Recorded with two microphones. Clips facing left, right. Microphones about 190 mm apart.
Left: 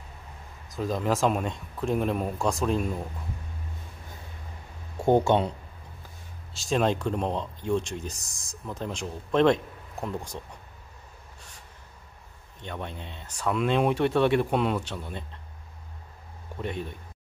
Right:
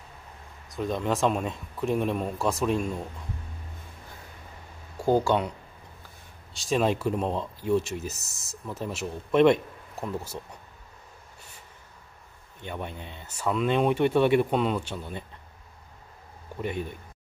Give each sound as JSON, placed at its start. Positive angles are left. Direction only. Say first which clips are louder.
{"t": 0.7, "sound": "speech", "louder": "left 1 dB", "side_deg": 0}
{"t": 4.9, "sound": "speech", "louder": "left 2 dB", "side_deg": 25}
{"t": 6.5, "sound": "speech", "louder": "even", "side_deg": 0}
{"t": 12.6, "sound": "speech", "louder": "right 1 dB", "side_deg": -5}
{"t": 16.6, "sound": "speech", "louder": "right 2 dB", "side_deg": -5}